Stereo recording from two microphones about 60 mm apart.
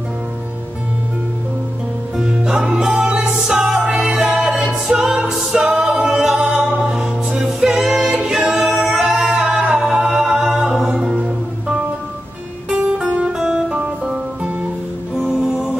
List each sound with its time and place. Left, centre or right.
2.1 s music: centre
11.1 s music: centre
13.4 s music: centre